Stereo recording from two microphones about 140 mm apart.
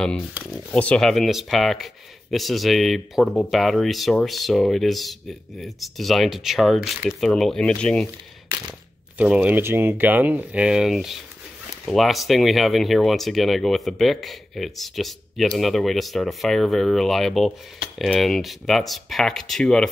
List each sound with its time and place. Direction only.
0.5 s speech: 10° left (ahead or behind)
9.2 s speech: 10° right (ahead or behind)